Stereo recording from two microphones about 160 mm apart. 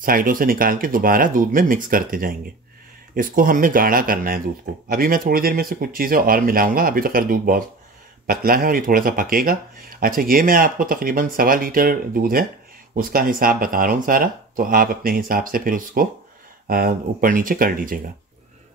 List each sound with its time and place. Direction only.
0.0 s speech: 60° right (ahead or behind)